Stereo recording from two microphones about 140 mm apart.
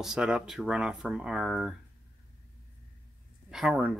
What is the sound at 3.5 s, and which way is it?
Speech, 5° right (ahead or behind).